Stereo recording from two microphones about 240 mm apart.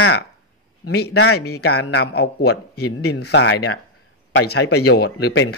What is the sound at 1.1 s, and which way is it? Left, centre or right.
Speech, left.